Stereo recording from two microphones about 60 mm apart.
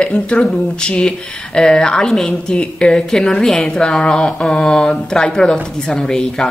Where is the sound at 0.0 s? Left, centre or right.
Centre.